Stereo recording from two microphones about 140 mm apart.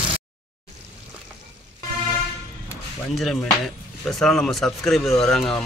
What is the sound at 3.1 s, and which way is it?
Speech, centre (ahead or behind).